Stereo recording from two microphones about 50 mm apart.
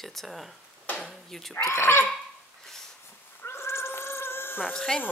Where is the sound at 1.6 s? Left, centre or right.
Left.